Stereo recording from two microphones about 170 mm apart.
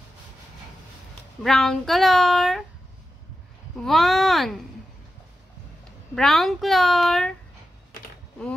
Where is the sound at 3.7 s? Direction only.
Centre (ahead or behind).